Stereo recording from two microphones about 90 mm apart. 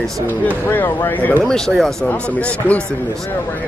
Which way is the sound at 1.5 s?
5° left (ahead or behind).